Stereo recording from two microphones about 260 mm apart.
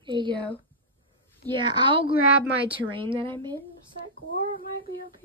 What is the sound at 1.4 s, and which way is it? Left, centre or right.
Speech, centre.